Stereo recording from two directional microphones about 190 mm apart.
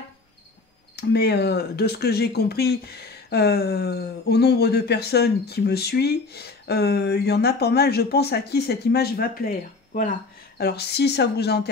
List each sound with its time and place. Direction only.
0.9 s speech: 60° left (ahead or behind)